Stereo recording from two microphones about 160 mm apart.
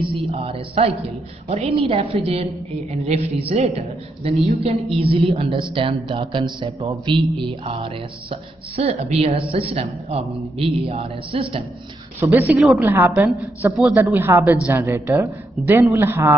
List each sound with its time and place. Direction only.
0.3 s a woman's voice: 35° right (ahead or behind)
12.2 s a woman's voice: 10° right (ahead or behind)
12.8 s a woman's voice: 15° right (ahead or behind)